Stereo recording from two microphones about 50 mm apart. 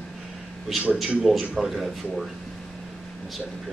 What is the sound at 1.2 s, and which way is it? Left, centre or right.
A man's voice, centre.